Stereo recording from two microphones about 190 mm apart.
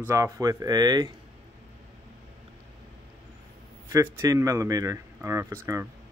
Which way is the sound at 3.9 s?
15° right (ahead or behind).